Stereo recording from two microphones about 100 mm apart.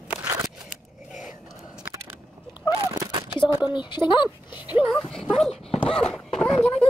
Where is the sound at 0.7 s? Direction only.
Centre (ahead or behind).